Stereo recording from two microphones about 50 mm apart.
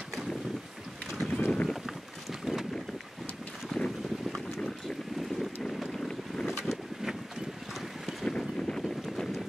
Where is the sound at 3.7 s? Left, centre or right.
Centre.